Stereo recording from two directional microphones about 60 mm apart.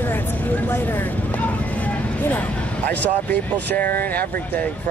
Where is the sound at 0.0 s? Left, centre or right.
Left.